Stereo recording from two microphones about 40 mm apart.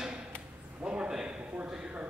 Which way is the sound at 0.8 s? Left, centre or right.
Right.